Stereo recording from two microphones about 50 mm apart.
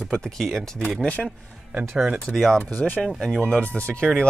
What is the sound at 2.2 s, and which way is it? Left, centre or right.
Speech, centre.